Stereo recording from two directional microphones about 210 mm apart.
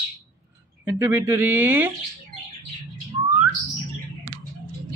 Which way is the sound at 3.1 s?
30° right (ahead or behind).